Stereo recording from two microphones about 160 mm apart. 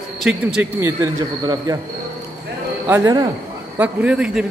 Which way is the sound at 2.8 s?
20° right (ahead or behind).